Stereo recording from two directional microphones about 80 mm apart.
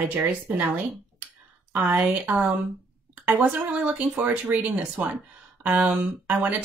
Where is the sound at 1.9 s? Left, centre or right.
Right.